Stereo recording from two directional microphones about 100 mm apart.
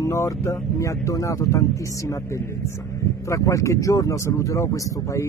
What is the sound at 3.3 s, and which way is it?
Speech, 30° left (ahead or behind).